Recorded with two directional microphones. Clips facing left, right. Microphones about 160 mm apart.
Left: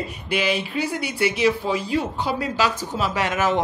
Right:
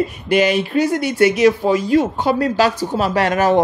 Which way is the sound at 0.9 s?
75° right (ahead or behind).